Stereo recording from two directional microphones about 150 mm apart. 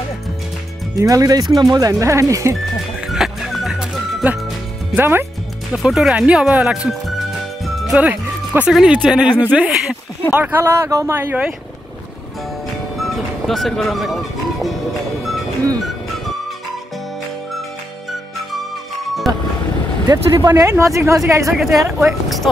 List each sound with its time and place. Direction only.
0.9 s speech: 20° right (ahead or behind)
3.1 s music: centre (ahead or behind)
4.9 s speech: 15° right (ahead or behind)
5.7 s speech: centre (ahead or behind)
13.0 s speech: centre (ahead or behind)
19.2 s vehicle: centre (ahead or behind)
20.1 s speech: 25° right (ahead or behind)
21.5 s speech: centre (ahead or behind)